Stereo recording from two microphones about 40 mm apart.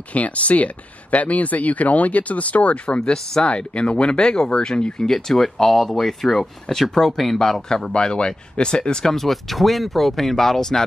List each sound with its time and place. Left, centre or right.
0.1 s speech: left
3.0 s speech: left
7.9 s speech: left
9.1 s speech: centre